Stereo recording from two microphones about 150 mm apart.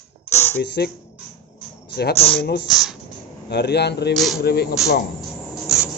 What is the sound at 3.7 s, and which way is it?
Speech, 90° left.